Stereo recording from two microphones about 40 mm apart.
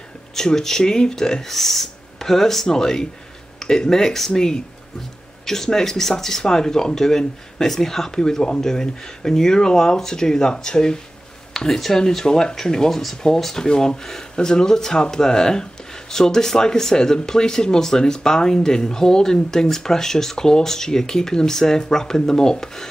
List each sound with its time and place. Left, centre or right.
0.4 s speech: centre